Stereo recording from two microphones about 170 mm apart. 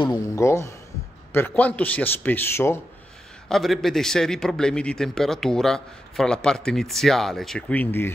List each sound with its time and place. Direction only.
0.0 s a man's voice: 20° left (ahead or behind)
3.4 s a man's voice: centre (ahead or behind)